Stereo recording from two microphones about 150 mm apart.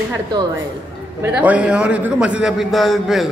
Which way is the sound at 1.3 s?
10° right (ahead or behind).